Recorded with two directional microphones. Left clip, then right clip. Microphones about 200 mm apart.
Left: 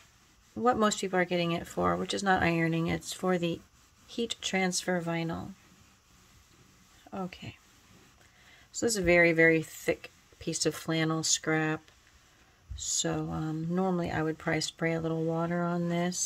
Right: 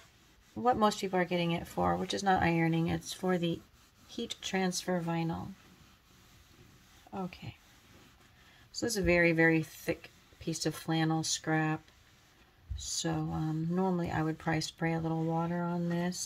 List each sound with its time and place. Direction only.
0.7 s speech: 25° left (ahead or behind)
7.1 s speech: 35° left (ahead or behind)
8.7 s speech: 35° left (ahead or behind)